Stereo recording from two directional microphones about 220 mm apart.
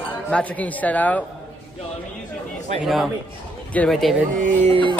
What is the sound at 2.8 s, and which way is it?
Speech, centre (ahead or behind).